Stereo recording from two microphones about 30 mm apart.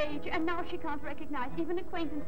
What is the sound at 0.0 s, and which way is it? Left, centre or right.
A woman's voice, centre.